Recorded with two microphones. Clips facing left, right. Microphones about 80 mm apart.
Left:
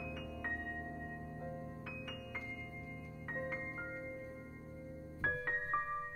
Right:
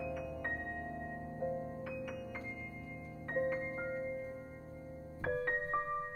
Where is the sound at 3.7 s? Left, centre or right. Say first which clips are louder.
Right 6 dB; centre.